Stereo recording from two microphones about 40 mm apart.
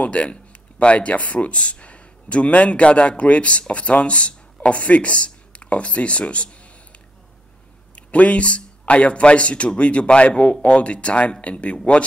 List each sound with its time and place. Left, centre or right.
0.0 s a man's voice: left
7.9 s a man's voice: left